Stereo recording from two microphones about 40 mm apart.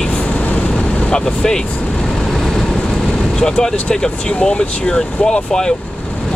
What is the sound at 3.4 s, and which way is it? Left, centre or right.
Speech, centre.